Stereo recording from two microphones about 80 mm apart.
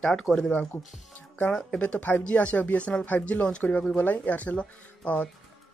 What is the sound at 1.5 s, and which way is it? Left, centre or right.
Speech, centre.